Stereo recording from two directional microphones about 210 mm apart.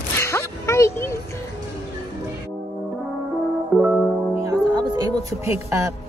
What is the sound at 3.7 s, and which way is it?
Music, 5° right (ahead or behind).